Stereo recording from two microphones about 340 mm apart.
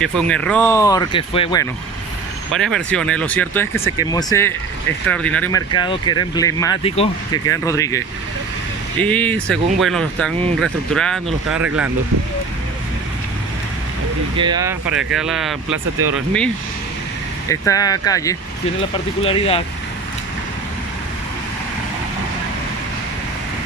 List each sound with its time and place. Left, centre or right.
0.0 s speech: centre
2.5 s speech: centre
9.0 s speech: centre
14.3 s speech: centre
17.5 s speech: centre